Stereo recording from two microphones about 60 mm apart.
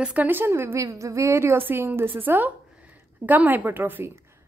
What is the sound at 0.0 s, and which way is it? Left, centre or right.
Speech, right.